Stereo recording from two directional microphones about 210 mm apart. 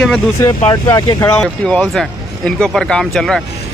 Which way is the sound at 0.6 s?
20° left (ahead or behind).